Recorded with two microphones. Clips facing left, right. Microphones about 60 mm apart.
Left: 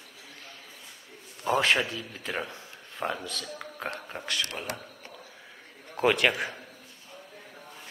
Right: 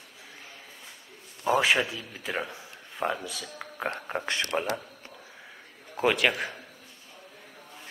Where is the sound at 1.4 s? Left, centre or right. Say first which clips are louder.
Right 1 dB; centre.